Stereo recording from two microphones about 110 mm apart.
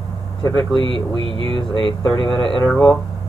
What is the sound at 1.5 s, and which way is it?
Speech, 50° left (ahead or behind).